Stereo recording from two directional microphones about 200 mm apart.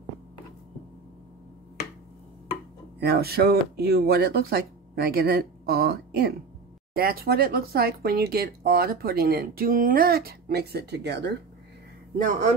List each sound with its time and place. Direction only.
3.0 s speech: 55° right (ahead or behind)
12.2 s speech: 40° right (ahead or behind)